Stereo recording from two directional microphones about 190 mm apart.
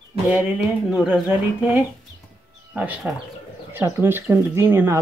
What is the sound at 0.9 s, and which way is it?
Speech, 5° right (ahead or behind).